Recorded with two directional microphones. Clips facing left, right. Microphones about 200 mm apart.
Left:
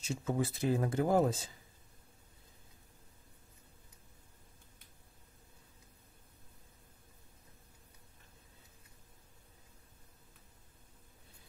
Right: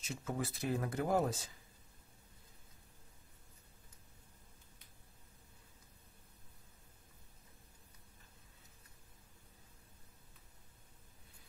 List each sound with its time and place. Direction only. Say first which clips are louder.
0.1 s speech: left 6 dB; 25° left (ahead or behind)